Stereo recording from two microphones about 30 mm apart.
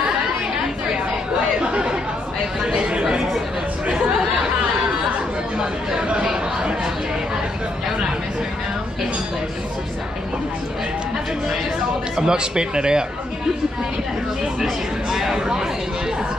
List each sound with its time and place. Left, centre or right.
1.6 s chatter: right
5.6 s chatter: right
12.2 s speech: right
14.6 s a sound: centre